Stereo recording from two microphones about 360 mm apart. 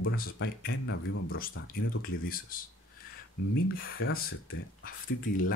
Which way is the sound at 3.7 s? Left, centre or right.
Left.